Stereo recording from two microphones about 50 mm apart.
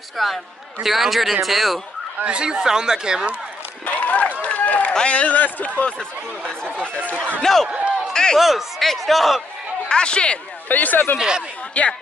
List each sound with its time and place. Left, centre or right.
0.2 s speech: centre
2.3 s speech: centre
3.8 s run: left
4.9 s speech: left
5.9 s speech: centre
6.9 s speech: left
7.5 s speech: centre
8.1 s a sound: centre
8.4 s speech: centre
9.8 s speech: centre
10.7 s speech: left
11.1 s speech: centre